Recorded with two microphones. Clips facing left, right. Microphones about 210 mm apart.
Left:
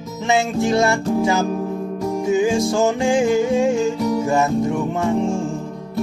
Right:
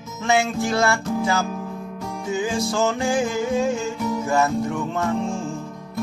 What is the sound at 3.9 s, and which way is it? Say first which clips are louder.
Music: left 5 dB; 35° left (ahead or behind).